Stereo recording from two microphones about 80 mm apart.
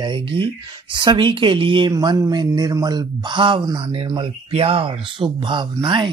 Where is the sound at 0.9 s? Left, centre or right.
Right.